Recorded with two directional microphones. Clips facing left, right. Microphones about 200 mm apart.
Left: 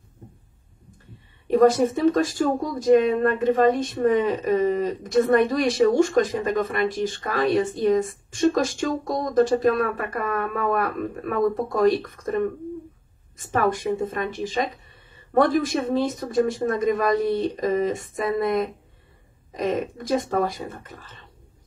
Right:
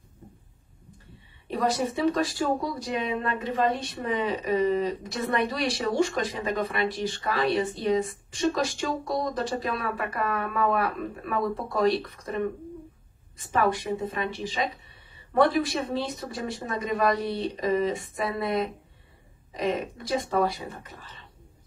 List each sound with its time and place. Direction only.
1.5 s speech: 45° left (ahead or behind)